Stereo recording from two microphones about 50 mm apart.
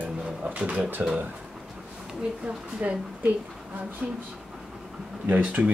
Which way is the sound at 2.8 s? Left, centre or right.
Right.